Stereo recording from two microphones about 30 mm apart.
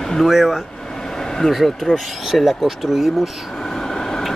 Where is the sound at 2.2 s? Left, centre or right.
Centre.